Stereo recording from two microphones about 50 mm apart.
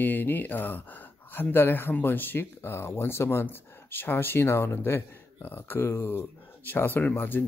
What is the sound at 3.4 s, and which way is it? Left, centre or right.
Speech, left.